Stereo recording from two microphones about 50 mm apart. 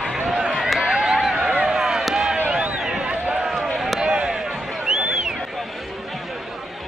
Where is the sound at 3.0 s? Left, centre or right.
Right.